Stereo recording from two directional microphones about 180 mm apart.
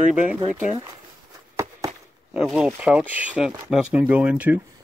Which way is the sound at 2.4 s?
5° right (ahead or behind).